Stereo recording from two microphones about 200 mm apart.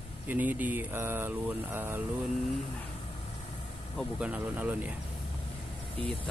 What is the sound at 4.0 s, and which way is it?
Speech, 5° right (ahead or behind).